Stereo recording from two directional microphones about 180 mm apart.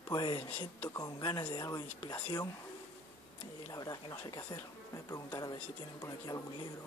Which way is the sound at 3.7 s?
20° left (ahead or behind).